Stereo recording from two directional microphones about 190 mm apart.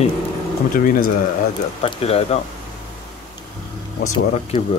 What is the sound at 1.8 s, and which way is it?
Speech, 30° left (ahead or behind).